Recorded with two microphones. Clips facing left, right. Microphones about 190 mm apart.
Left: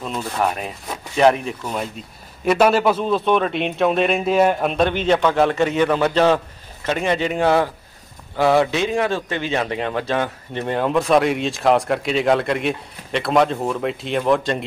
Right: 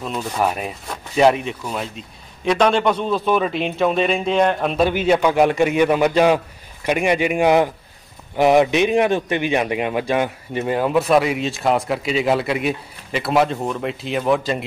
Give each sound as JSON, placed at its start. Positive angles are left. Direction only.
{"t": 0.0, "sound": "a man's voice", "side_deg": 0}
{"t": 1.6, "sound": "a man's voice", "side_deg": 10}